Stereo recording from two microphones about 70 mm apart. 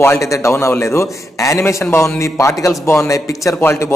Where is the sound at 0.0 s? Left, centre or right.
Left.